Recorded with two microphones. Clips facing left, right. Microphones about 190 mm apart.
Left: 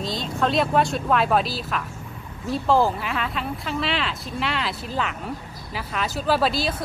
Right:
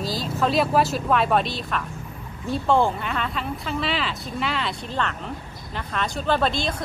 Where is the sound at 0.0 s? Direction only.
Centre (ahead or behind).